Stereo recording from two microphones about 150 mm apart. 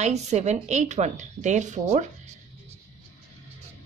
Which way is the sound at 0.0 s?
50° right (ahead or behind).